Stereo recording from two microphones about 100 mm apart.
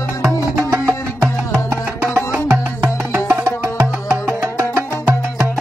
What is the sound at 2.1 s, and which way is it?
Music, 25° right (ahead or behind).